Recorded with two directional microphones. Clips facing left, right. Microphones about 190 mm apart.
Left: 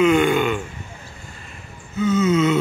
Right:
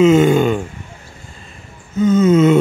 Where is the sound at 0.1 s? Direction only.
40° right (ahead or behind).